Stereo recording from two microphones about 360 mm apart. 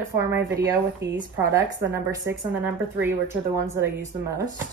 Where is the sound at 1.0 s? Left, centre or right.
Right.